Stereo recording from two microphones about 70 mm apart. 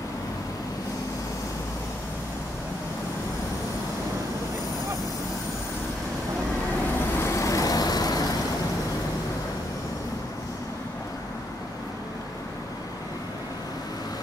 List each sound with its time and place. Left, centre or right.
7.2 s vehicle: left